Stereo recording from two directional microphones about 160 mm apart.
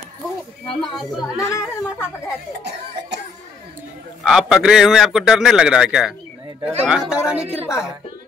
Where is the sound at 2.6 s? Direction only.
90° right.